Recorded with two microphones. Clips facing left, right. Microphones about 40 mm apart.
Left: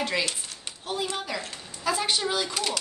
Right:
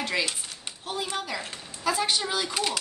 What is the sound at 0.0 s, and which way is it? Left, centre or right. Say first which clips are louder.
Speech: left 1 dB; centre.